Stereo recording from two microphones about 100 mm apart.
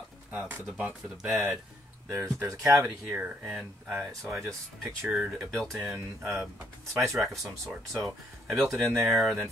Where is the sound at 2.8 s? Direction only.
15° right (ahead or behind).